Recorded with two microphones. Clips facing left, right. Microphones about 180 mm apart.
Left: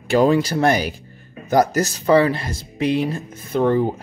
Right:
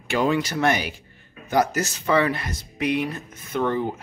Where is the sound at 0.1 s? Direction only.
35° left (ahead or behind).